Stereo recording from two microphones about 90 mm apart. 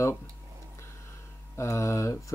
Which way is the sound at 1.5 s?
30° left (ahead or behind).